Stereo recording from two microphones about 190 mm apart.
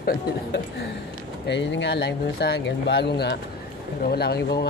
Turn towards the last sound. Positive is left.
turn(degrees=60)  # may be behind; listen again after turning